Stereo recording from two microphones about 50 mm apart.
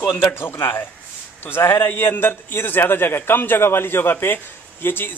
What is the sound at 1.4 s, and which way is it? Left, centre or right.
A man's voice, left.